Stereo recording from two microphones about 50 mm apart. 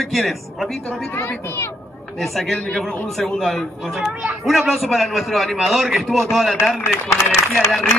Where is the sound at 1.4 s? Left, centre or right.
Left.